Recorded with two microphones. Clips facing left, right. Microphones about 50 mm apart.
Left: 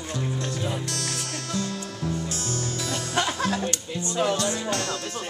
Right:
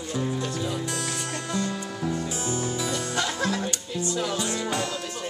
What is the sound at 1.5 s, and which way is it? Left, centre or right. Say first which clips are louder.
Music: right 1 dB; centre.